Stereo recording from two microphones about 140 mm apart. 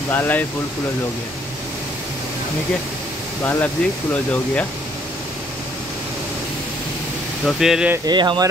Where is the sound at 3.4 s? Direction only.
15° left (ahead or behind).